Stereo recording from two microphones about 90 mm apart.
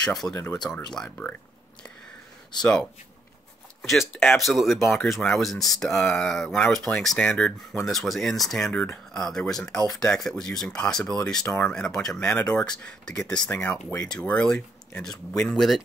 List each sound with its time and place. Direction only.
0.0 s speech: 5° left (ahead or behind)
0.3 s speech: 30° left (ahead or behind)
0.6 s speech: 10° left (ahead or behind)
2.6 s speech: 10° left (ahead or behind)
11.4 s speech: 20° left (ahead or behind)
11.7 s speech: 5° left (ahead or behind)
12.2 s speech: 15° left (ahead or behind)